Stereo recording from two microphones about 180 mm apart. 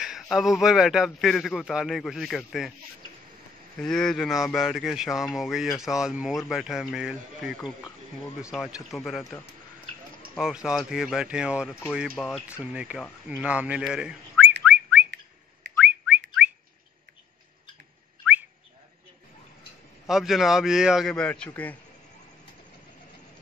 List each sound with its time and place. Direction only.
0.0 s a man's voice: centre (ahead or behind)
3.7 s a man's voice: 5° left (ahead or behind)
10.3 s a man's voice: centre (ahead or behind)
14.6 s bird: 5° right (ahead or behind)
20.1 s a man's voice: centre (ahead or behind)